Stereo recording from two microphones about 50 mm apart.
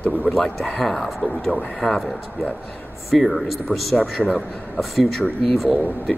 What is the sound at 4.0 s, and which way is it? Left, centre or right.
Speech, centre.